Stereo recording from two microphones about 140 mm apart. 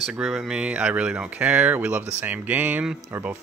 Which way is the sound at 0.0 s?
5° right (ahead or behind).